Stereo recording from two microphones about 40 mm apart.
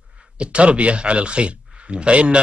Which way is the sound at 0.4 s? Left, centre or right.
Right.